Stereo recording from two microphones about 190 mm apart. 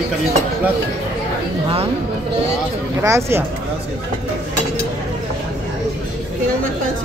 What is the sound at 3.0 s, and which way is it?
Speech, 15° right (ahead or behind).